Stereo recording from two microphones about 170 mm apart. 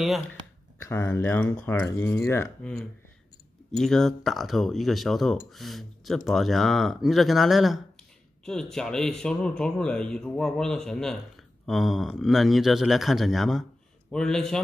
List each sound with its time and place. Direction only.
0.7 s speech: 15° left (ahead or behind)
3.7 s speech: 5° left (ahead or behind)